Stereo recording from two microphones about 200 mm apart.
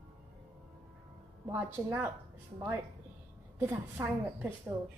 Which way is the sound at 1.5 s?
10° right (ahead or behind).